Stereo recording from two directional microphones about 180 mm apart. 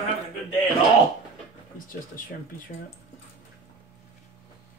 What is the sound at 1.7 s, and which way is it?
Speech, 50° left (ahead or behind).